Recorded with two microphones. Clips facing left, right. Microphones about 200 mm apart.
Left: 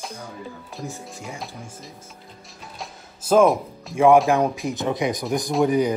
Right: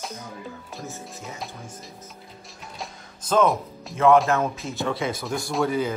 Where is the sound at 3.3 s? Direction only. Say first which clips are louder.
Left 4 dB; 5° left (ahead or behind).